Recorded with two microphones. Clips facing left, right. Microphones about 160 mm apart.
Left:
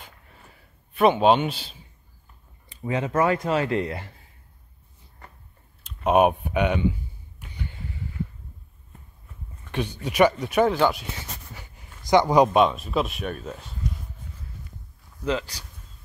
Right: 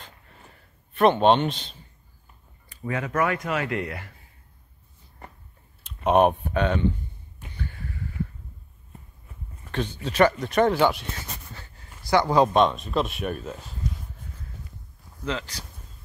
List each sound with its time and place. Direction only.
0.0 s a sound: 5° left (ahead or behind)
2.7 s speech: 20° left (ahead or behind)
5.9 s a sound: 5° left (ahead or behind); by 8.1 s 20° left (ahead or behind)
9.7 s a sound: 10° left (ahead or behind)
10.0 s speech: 10° left (ahead or behind)
10.7 s speech: centre (ahead or behind)
11.5 s speech: 15° left (ahead or behind)
12.6 s speech: 5° left (ahead or behind)
15.2 s speech: 15° left (ahead or behind)